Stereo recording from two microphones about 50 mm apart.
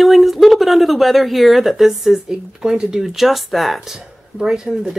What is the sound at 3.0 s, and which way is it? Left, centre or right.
Speech, centre.